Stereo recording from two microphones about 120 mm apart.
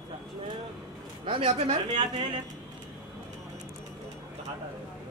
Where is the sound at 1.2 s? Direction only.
50° right (ahead or behind).